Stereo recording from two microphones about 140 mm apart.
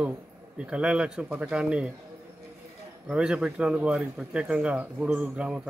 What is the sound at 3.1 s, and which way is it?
Speech, 5° right (ahead or behind).